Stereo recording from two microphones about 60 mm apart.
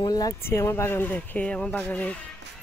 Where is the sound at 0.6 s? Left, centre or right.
Left.